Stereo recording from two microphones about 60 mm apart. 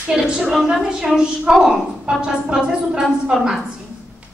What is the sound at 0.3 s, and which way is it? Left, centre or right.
A woman's voice, centre.